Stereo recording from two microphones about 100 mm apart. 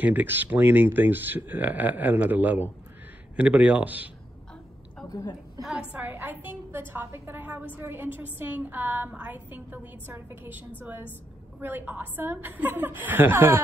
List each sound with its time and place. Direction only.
0.0 s a woman's voice: 20° right (ahead or behind)
5.0 s a sound: 40° left (ahead or behind)
5.6 s speech: 5° right (ahead or behind)
5.9 s a woman's voice: 20° right (ahead or behind)